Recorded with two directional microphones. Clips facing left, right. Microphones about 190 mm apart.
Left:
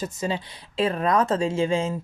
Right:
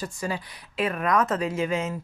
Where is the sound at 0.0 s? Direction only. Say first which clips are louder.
Left 3 dB; 25° left (ahead or behind).